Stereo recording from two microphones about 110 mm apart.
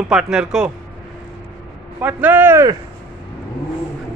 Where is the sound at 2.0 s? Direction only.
15° right (ahead or behind).